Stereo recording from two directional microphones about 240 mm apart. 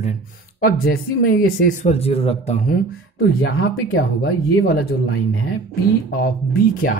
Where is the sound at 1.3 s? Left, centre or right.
Left.